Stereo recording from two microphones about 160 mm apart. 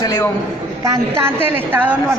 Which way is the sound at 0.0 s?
20° left (ahead or behind).